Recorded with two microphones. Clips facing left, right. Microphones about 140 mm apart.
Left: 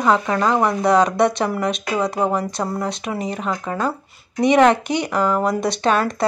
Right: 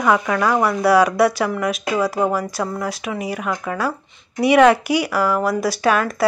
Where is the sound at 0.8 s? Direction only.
5° right (ahead or behind).